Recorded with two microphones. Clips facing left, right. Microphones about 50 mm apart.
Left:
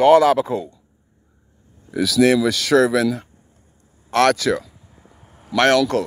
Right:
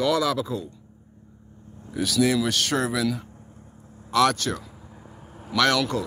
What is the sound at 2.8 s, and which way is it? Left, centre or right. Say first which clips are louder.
Speech: left 8 dB; left.